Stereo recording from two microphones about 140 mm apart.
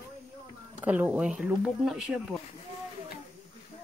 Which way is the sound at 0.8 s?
10° right (ahead or behind).